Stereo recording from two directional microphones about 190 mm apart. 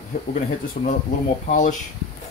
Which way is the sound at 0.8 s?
45° left (ahead or behind).